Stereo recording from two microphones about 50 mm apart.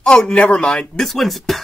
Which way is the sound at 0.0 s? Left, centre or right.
Centre.